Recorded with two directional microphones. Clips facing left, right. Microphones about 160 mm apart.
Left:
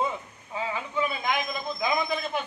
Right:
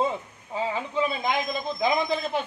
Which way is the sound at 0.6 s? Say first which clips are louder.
Right 3 dB; 30° right (ahead or behind).